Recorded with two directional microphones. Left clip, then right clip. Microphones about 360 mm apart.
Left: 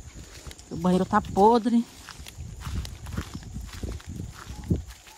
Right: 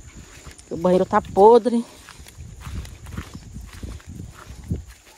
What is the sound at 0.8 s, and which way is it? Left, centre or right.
Speech, centre.